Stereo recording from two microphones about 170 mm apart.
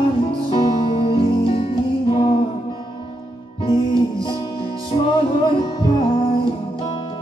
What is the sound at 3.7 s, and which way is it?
Music, 30° left (ahead or behind).